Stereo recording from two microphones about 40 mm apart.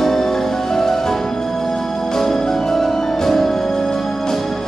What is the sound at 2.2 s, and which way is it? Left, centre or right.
Music, centre.